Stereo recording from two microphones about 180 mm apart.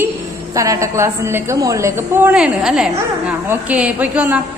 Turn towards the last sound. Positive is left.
turn(degrees=-10)  # may be behind; listen again after turning